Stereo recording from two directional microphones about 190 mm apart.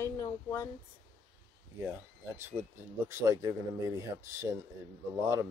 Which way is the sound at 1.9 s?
10° right (ahead or behind).